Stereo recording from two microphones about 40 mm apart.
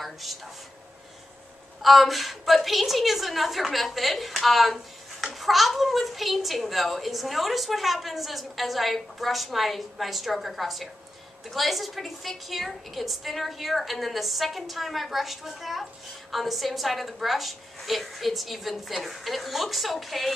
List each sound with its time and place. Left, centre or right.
0.0 s a woman's voice: centre
1.8 s a woman's voice: centre